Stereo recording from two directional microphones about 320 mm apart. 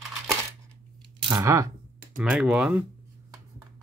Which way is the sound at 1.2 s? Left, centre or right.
Centre.